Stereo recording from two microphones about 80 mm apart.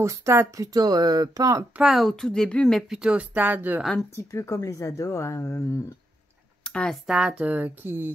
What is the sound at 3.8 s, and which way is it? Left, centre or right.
Speech, centre.